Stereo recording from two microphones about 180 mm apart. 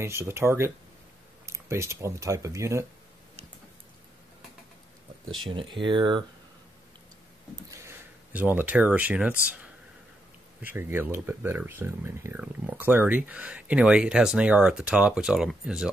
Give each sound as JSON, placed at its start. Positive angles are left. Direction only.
{"t": 0.0, "sound": "speech", "side_deg": -15}
{"t": 5.4, "sound": "speech", "side_deg": -30}
{"t": 7.7, "sound": "speech", "side_deg": -10}